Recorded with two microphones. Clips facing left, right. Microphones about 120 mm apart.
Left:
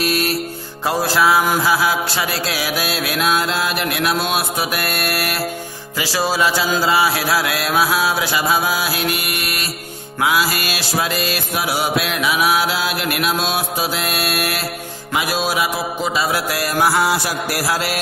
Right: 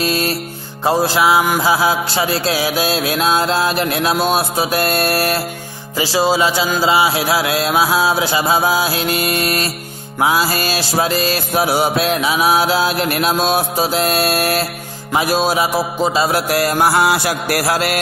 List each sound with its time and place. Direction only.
0.0 s music: 30° right (ahead or behind)
0.8 s mantra: 20° right (ahead or behind)
10.2 s music: 30° right (ahead or behind)
16.3 s mantra: 50° right (ahead or behind)
16.6 s music: 40° right (ahead or behind)
17.0 s music: 65° right (ahead or behind)